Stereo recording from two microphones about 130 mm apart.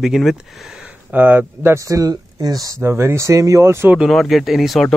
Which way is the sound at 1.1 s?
15° right (ahead or behind).